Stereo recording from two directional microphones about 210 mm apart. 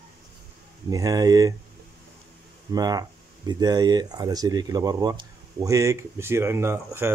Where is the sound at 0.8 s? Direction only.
15° right (ahead or behind).